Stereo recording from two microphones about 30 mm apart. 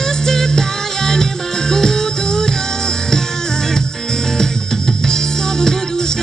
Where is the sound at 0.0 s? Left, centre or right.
Centre.